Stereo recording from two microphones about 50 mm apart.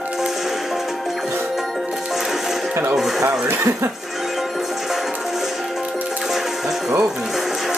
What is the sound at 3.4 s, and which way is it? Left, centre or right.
Speech, right.